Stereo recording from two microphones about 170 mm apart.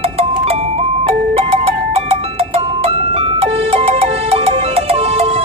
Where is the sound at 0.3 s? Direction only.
35° right (ahead or behind).